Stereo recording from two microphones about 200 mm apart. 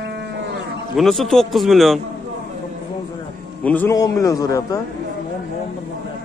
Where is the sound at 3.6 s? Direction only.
10° left (ahead or behind).